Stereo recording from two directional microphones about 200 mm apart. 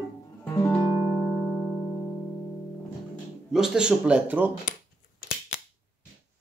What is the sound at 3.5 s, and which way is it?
Speech, 5° right (ahead or behind).